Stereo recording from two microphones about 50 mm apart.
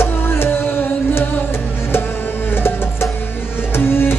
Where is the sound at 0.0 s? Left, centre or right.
Left.